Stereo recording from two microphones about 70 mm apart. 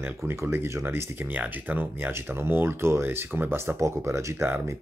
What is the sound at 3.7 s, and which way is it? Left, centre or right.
Speech, right.